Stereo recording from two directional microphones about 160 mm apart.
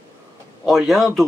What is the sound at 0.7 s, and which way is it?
Speech, centre (ahead or behind).